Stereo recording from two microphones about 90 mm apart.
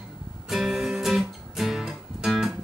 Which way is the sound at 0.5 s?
5° right (ahead or behind).